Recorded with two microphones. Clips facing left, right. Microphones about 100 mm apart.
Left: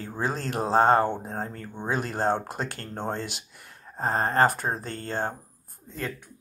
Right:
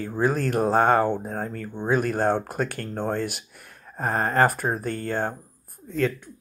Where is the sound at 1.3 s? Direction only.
30° left (ahead or behind).